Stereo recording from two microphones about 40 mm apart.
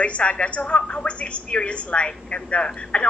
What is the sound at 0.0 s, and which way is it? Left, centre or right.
A woman's voice, left.